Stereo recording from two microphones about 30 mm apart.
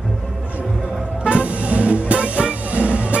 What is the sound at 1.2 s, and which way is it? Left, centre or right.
Music, right.